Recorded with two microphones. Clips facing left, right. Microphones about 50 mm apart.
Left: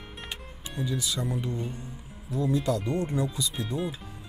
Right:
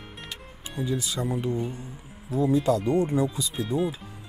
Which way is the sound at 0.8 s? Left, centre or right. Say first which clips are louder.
Right 2 dB; right.